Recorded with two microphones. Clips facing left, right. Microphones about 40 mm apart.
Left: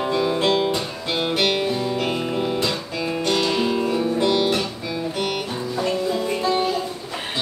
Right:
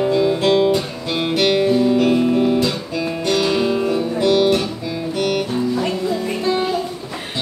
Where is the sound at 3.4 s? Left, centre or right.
Centre.